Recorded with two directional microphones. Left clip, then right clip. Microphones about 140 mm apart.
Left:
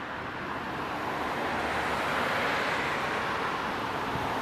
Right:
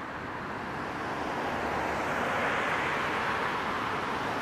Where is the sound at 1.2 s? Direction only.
40° left (ahead or behind); by 3.1 s 15° left (ahead or behind).